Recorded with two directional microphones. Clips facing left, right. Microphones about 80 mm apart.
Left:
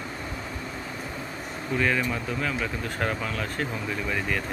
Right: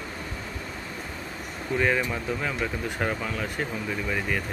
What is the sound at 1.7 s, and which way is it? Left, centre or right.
Speech, centre.